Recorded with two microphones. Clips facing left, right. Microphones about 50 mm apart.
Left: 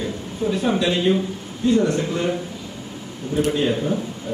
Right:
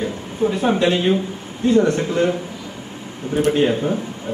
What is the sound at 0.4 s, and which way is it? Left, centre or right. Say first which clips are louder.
Speech: right 4 dB; right.